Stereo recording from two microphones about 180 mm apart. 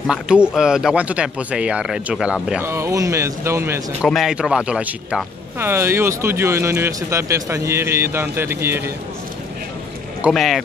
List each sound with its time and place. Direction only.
0.0 s speech: 5° right (ahead or behind)
2.6 s speech: 15° right (ahead or behind)
4.0 s speech: centre (ahead or behind)
10.3 s speech: centre (ahead or behind)